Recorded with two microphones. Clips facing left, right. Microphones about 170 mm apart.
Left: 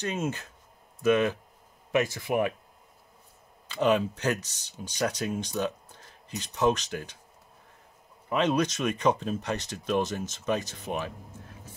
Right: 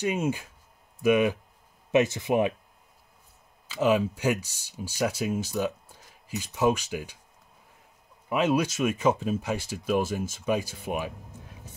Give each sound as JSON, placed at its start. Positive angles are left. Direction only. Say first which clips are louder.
{"t": 0.0, "sound": "speech", "louder": "right 4 dB", "side_deg": -10}
{"t": 3.6, "sound": "speech", "louder": "right 1 dB", "side_deg": -5}
{"t": 8.3, "sound": "speech", "louder": "right 1 dB", "side_deg": -5}